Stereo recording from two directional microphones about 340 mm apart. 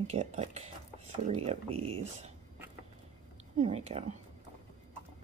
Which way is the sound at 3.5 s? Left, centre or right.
Centre.